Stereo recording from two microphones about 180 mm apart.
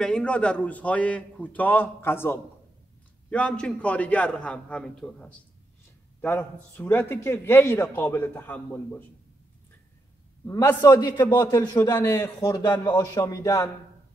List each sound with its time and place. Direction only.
0.0 s a man's voice: 5° left (ahead or behind)
10.4 s a man's voice: 15° left (ahead or behind)